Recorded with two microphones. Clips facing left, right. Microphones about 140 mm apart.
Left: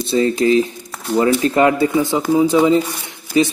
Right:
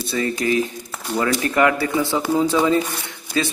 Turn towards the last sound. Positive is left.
turn(degrees=20)  # may be behind; listen again after turning